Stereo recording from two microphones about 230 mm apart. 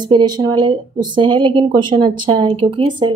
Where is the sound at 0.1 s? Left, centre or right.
Centre.